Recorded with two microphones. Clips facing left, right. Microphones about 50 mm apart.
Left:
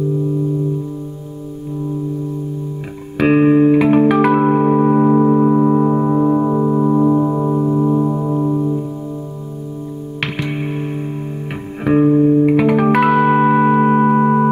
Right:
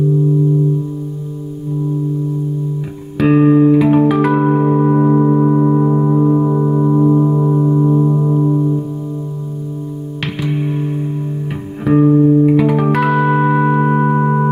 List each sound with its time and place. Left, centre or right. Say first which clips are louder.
3.2 s music: right 1 dB; left; by 8.7 s centre
10.5 s music: right 3 dB; left